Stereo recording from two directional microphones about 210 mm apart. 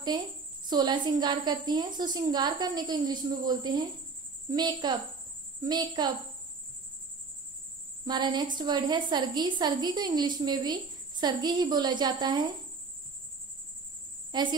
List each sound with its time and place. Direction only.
0.1 s a woman's voice: 20° right (ahead or behind)
8.0 s a woman's voice: 20° right (ahead or behind)
14.3 s a woman's voice: 20° right (ahead or behind)